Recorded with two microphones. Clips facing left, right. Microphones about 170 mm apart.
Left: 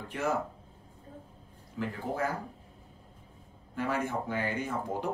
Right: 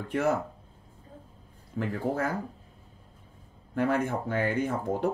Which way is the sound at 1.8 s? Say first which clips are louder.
Right 3 dB; 55° right (ahead or behind).